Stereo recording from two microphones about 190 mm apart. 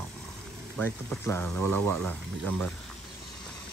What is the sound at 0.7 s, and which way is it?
Speech, 10° left (ahead or behind).